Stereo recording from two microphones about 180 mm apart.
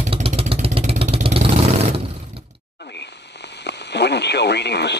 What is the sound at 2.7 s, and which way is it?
Speech, 70° left (ahead or behind).